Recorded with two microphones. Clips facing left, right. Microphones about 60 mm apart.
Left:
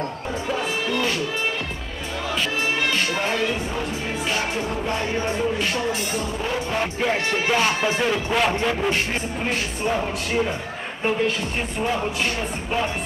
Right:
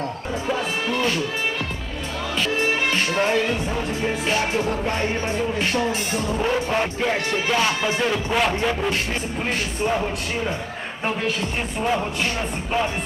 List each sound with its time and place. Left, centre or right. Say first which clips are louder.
0.5 s music: right 1 dB; centre
6.8 s music: even; centre
7.3 s music: even; centre
7.6 s music: left 1 dB; centre